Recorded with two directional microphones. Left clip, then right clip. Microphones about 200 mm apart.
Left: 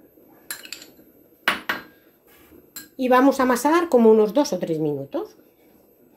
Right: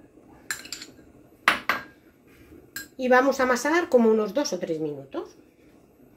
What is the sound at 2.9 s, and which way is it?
Speech, 35° left (ahead or behind).